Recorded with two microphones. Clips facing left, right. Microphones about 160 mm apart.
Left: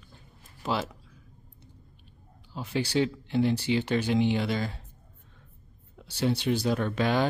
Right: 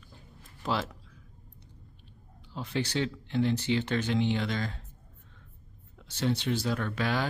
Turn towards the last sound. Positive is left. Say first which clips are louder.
# left 4 dB
turn(degrees=20)  # may be behind; listen again after turning